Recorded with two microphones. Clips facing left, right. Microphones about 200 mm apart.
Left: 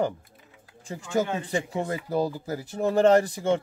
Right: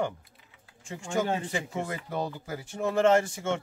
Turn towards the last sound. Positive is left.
turn(degrees=35)  # may be behind; listen again after turning